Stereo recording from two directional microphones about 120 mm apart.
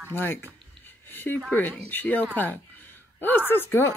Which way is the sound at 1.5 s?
10° left (ahead or behind).